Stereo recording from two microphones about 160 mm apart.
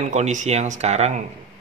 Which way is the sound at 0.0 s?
45° right (ahead or behind).